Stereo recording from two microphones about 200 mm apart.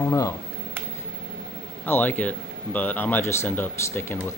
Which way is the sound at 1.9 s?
10° left (ahead or behind).